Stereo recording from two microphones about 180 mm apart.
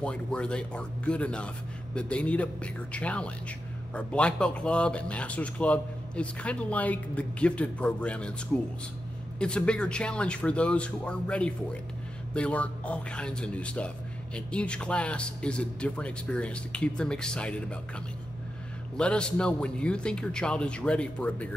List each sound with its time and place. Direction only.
0.0 s a man's voice: 5° left (ahead or behind)
9.4 s a man's voice: 5° left (ahead or behind)